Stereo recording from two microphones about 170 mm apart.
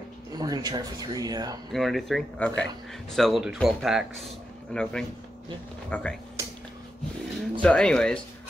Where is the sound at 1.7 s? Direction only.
Centre (ahead or behind).